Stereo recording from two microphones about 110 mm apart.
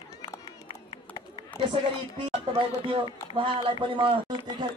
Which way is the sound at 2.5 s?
45° right (ahead or behind).